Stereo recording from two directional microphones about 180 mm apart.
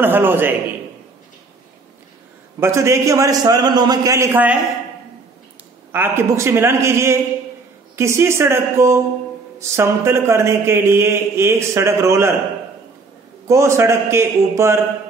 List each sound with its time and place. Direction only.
0.0 s a man's voice: 10° right (ahead or behind)
2.6 s a man's voice: 15° right (ahead or behind)
5.9 s a man's voice: 10° right (ahead or behind)
13.5 s a man's voice: 15° right (ahead or behind)